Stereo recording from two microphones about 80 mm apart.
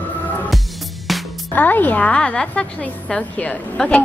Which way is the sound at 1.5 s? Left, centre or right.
Left.